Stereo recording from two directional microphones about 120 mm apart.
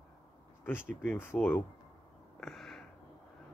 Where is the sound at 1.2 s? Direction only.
20° left (ahead or behind).